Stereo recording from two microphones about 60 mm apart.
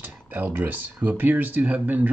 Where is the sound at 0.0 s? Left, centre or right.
Right.